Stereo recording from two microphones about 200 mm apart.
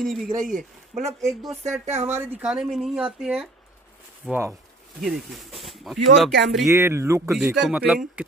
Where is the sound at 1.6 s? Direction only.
35° right (ahead or behind).